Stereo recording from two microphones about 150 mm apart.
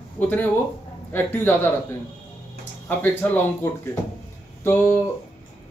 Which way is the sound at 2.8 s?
15° left (ahead or behind).